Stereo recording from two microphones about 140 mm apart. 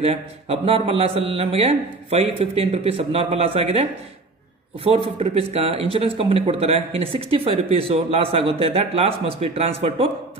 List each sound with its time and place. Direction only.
0.0 s a man's voice: 45° right (ahead or behind)
5.2 s a man's voice: 45° right (ahead or behind)